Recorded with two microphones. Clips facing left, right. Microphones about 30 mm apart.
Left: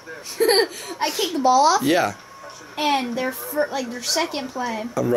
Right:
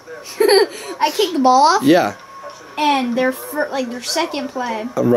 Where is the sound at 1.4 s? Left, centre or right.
Right.